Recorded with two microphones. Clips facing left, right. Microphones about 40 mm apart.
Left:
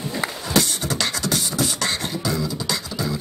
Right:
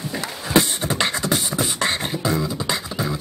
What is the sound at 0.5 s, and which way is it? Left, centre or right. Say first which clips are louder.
Beatboxing: right 4 dB; right.